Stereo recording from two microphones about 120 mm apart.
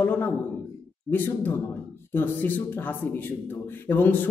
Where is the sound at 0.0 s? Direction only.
15° left (ahead or behind).